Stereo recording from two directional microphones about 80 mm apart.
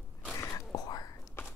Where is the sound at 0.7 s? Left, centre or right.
Left.